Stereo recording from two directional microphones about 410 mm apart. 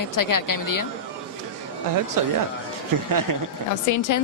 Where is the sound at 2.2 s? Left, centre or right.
Right.